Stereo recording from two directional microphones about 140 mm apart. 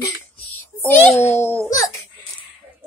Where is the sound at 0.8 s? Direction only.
10° left (ahead or behind).